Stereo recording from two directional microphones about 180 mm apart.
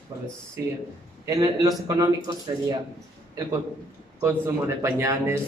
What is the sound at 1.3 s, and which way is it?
Speech, 20° right (ahead or behind).